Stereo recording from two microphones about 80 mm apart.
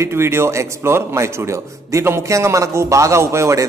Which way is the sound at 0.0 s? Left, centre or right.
Right.